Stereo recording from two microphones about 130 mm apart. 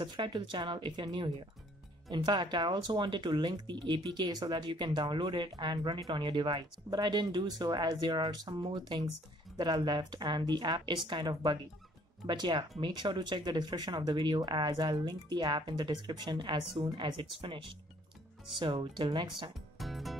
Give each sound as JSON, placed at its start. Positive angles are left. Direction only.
{"t": 0.0, "sound": "speech", "side_deg": -35}
{"t": 18.6, "sound": "speech", "side_deg": -40}
{"t": 19.8, "sound": "music", "side_deg": 0}